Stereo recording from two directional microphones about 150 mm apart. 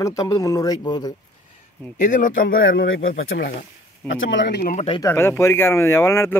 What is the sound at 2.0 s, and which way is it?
Speech, 60° left (ahead or behind).